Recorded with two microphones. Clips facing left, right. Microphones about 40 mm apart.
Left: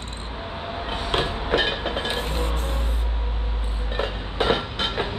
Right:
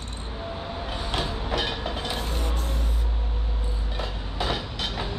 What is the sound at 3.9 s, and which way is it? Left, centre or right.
Train, left.